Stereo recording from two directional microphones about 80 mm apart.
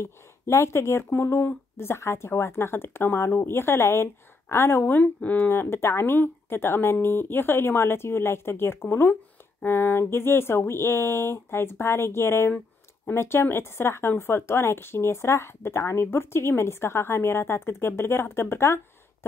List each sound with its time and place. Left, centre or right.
0.0 s speech: left